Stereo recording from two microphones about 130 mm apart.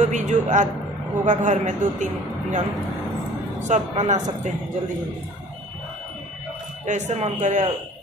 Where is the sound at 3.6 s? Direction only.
65° right (ahead or behind).